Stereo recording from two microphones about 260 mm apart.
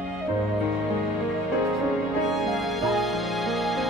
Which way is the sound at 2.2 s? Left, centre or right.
Centre.